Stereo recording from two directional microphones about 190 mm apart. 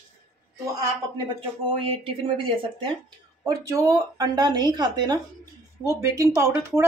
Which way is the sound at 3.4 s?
20° right (ahead or behind).